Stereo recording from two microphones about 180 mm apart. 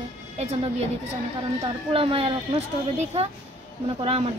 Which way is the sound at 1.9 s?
30° right (ahead or behind).